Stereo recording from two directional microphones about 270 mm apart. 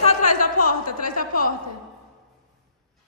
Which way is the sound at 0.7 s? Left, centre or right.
Left.